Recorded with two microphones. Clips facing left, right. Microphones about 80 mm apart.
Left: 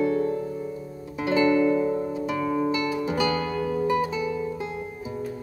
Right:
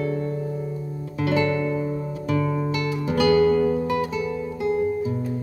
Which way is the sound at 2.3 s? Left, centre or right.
Centre.